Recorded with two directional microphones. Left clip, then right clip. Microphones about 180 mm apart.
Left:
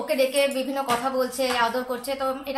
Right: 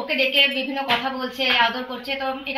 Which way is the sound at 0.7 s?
25° left (ahead or behind).